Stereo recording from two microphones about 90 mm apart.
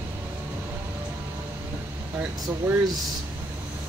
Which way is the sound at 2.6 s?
30° right (ahead or behind).